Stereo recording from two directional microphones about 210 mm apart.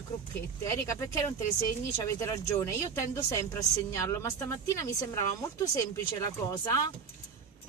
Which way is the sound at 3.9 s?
15° left (ahead or behind).